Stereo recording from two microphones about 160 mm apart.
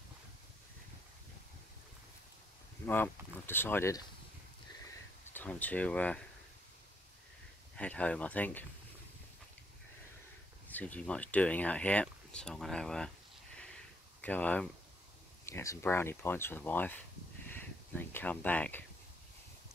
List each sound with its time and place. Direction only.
2.9 s speech: 10° left (ahead or behind)
5.3 s speech: 10° left (ahead or behind)
7.7 s speech: 10° left (ahead or behind)
10.7 s speech: 10° left (ahead or behind)
14.2 s speech: 10° left (ahead or behind)